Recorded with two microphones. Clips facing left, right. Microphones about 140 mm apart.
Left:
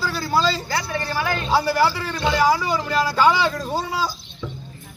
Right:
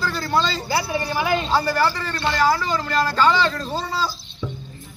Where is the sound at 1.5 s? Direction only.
10° left (ahead or behind).